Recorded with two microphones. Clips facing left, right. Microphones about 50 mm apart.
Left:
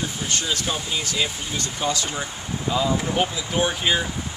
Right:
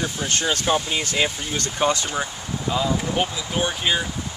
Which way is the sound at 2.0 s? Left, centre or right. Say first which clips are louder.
Right 2 dB; centre.